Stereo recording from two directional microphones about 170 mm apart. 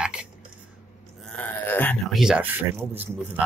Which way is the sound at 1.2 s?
10° left (ahead or behind).